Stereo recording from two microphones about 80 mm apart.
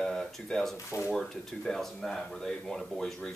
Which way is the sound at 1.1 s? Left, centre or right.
Centre.